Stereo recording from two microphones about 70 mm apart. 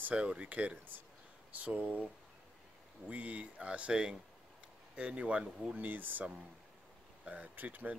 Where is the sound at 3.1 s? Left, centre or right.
Centre.